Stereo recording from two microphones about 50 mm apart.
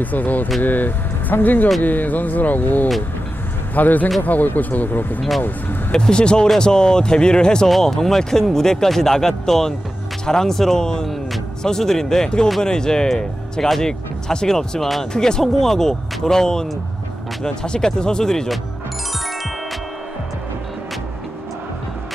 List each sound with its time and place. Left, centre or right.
0.0 s speech: left
5.9 s speech: centre
7.6 s speech: centre